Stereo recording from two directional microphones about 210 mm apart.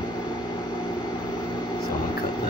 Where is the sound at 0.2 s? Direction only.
20° left (ahead or behind).